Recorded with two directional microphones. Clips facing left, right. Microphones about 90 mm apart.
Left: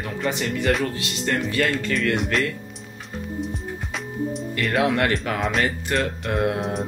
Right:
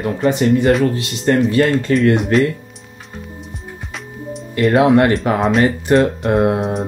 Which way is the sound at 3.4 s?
Centre (ahead or behind).